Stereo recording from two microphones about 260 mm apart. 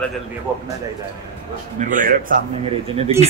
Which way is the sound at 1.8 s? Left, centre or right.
Right.